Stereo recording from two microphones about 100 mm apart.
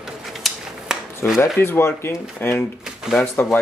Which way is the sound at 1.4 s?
25° left (ahead or behind).